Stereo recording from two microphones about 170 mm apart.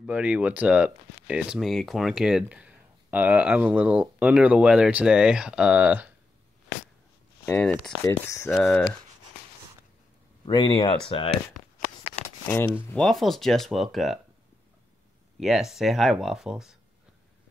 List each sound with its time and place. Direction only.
0.0 s speech: 5° right (ahead or behind)
7.4 s speech: 10° left (ahead or behind)
10.4 s speech: 30° left (ahead or behind)
12.4 s speech: 15° left (ahead or behind)
12.9 s speech: centre (ahead or behind)
15.3 s speech: centre (ahead or behind)